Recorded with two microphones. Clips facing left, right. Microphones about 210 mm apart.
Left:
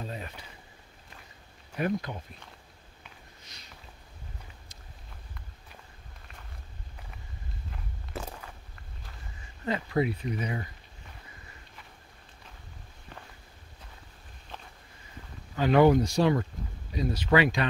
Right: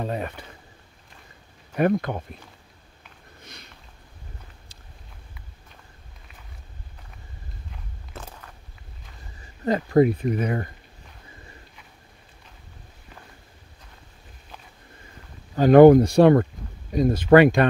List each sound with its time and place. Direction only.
0.0 s speech: 65° right (ahead or behind)
1.8 s speech: 60° right (ahead or behind)
7.7 s walk: 5° left (ahead or behind)
9.7 s speech: 45° right (ahead or behind)
15.5 s speech: 45° right (ahead or behind)